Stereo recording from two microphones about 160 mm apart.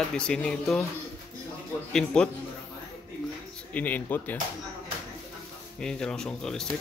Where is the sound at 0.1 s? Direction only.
5° left (ahead or behind).